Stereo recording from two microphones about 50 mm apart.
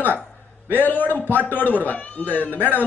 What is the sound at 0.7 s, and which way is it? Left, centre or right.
A man's voice, left.